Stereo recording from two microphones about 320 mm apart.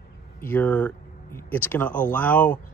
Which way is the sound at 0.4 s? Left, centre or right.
Centre.